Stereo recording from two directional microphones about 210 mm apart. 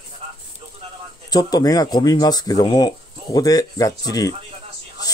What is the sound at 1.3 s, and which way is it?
Speech, 20° left (ahead or behind).